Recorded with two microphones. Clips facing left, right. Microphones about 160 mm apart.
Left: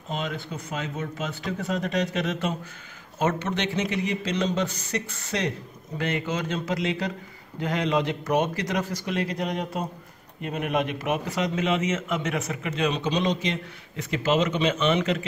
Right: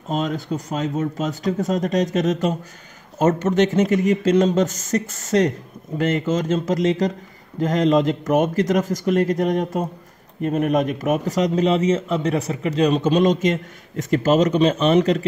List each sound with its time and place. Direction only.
0.1 s a man's voice: 40° right (ahead or behind)